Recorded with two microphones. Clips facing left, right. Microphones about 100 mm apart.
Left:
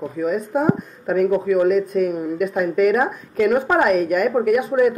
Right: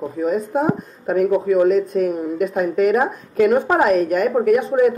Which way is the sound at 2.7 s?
35° right (ahead or behind).